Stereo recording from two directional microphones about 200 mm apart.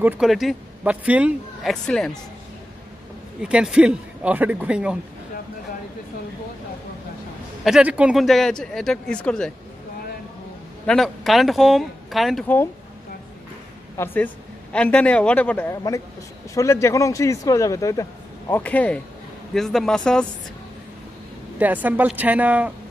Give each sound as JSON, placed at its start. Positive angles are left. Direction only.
{"t": 0.0, "sound": "a man's voice", "side_deg": -5}
{"t": 3.4, "sound": "a man's voice", "side_deg": -5}
{"t": 7.6, "sound": "a man's voice", "side_deg": -5}
{"t": 10.9, "sound": "a man's voice", "side_deg": 0}
{"t": 13.9, "sound": "a man's voice", "side_deg": 10}
{"t": 21.5, "sound": "speech", "side_deg": -10}